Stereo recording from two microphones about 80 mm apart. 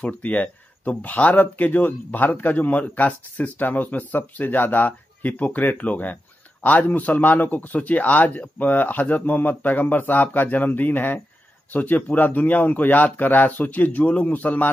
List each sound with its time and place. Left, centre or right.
0.0 s speech: centre